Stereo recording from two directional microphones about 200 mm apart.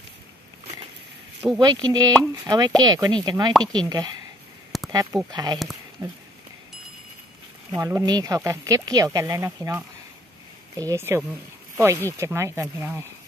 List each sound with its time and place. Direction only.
1.6 s speech: 20° right (ahead or behind)
7.7 s speech: 15° right (ahead or behind)